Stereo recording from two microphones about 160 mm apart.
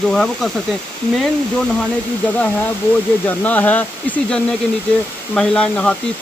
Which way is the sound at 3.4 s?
10° left (ahead or behind).